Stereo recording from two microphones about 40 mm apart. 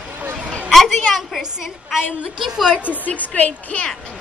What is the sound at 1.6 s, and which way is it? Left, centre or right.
A woman's voice, centre.